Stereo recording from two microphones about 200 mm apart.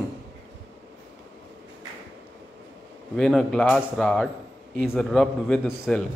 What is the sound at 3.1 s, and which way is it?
A man's voice, centre (ahead or behind).